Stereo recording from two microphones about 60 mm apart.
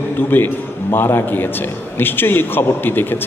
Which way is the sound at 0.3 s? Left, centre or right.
Left.